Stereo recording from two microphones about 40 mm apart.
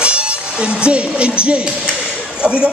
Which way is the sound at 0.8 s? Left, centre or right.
Right.